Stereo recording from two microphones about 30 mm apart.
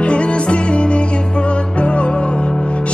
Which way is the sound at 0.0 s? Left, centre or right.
Left.